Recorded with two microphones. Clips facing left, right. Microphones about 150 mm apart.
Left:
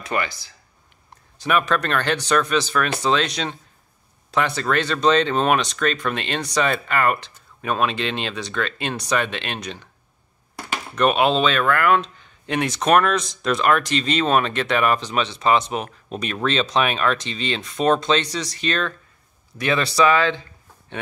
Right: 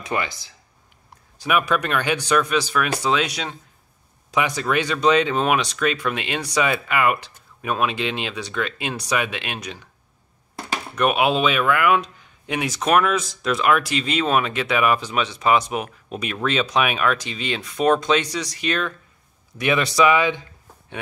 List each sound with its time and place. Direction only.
0.0 s speech: 20° right (ahead or behind)
1.4 s speech: 10° right (ahead or behind)
11.0 s speech: 10° right (ahead or behind)